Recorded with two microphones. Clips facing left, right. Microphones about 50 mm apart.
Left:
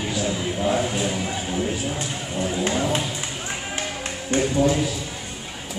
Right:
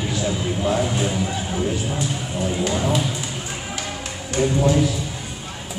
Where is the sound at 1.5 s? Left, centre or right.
Centre.